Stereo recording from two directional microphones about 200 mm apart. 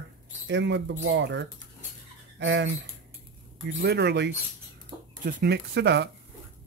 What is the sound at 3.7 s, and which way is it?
Speech, 55° right (ahead or behind).